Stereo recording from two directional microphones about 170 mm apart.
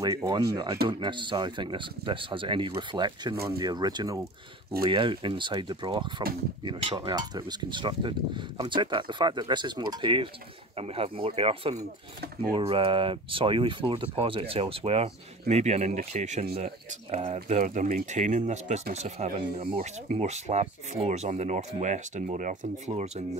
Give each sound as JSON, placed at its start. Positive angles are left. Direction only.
{"t": 0.0, "sound": "speech", "side_deg": -20}